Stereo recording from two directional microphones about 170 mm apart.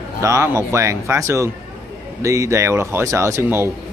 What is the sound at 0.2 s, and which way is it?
Speech, 15° right (ahead or behind).